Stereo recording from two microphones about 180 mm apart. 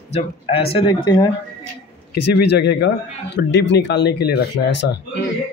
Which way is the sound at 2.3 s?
70° left (ahead or behind).